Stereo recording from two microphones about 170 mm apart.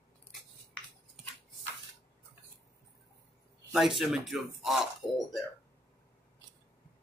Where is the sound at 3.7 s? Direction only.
Centre (ahead or behind).